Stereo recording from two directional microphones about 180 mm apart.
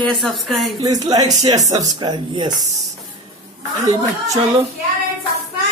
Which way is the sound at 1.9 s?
25° right (ahead or behind).